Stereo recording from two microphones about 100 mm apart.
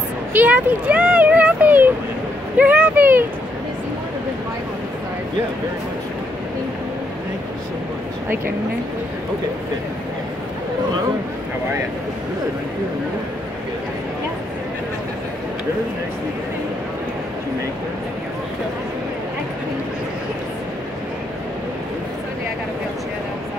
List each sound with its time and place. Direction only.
0.3 s speech: 15° right (ahead or behind)